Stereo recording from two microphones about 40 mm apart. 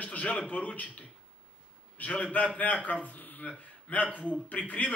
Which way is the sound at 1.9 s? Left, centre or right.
Left.